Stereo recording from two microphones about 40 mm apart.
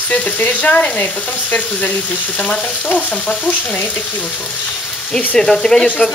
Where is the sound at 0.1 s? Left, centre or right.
Left.